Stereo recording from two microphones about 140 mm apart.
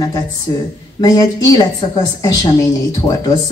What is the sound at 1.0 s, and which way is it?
A woman's voice, 25° left (ahead or behind).